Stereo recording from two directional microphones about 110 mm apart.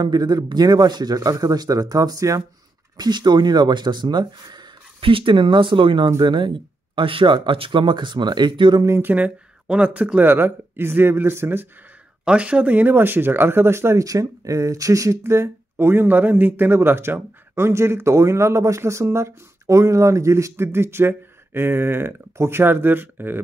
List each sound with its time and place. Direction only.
0.0 s speech: 40° right (ahead or behind)
8.8 s speech: 20° right (ahead or behind)
12.3 s speech: 10° right (ahead or behind)